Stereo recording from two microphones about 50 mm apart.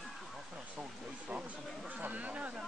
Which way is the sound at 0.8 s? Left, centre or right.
Right.